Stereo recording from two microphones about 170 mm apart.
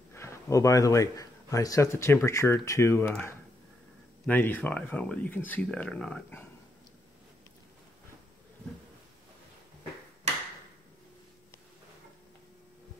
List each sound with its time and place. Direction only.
0.1 s speech: 15° left (ahead or behind)